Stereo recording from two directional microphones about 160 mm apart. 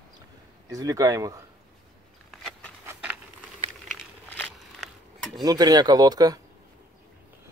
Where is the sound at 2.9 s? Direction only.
10° right (ahead or behind).